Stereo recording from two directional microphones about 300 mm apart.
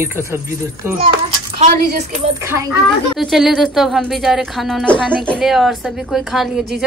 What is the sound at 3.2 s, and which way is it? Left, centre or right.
Speech, centre.